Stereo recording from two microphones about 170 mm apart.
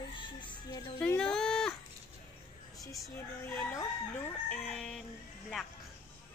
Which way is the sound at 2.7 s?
Centre (ahead or behind).